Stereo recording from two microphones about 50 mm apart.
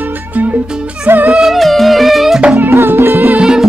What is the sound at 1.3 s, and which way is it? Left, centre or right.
Music, centre.